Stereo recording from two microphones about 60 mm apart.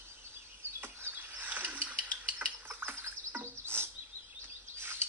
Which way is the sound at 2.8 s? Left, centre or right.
Right.